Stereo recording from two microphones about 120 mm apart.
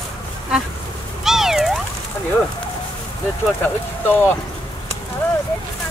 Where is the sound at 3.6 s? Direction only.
15° left (ahead or behind).